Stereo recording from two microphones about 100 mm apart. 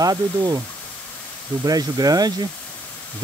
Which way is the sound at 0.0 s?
40° right (ahead or behind).